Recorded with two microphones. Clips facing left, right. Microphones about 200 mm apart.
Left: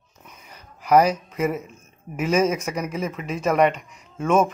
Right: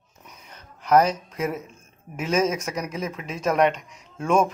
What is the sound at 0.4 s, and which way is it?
Speech, 5° left (ahead or behind).